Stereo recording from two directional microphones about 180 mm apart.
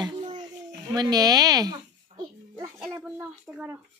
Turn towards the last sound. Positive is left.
turn(degrees=-5)  # may be behind; listen again after turning